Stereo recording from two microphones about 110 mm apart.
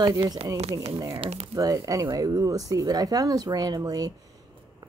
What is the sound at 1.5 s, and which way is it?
Speech, 30° right (ahead or behind).